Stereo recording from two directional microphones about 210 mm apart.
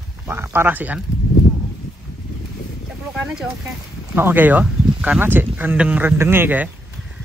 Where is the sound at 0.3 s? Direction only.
10° right (ahead or behind).